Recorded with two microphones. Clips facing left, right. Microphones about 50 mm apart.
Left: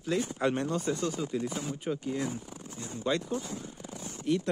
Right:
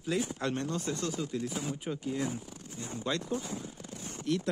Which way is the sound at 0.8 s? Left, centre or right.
Centre.